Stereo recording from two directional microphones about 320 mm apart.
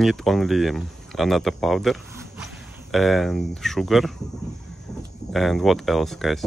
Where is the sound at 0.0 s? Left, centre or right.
Centre.